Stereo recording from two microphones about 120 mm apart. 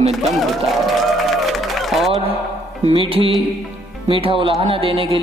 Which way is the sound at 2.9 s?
50° right (ahead or behind).